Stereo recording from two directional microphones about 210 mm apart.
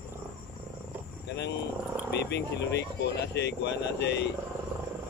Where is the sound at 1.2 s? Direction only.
55° left (ahead or behind).